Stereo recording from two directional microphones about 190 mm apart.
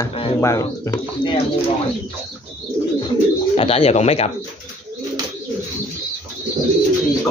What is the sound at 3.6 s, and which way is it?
Speech, 30° left (ahead or behind).